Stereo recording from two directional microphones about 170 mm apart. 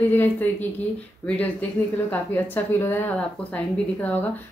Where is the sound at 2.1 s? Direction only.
10° left (ahead or behind).